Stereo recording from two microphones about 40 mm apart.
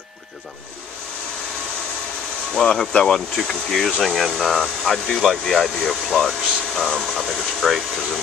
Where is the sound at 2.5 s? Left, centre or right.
Centre.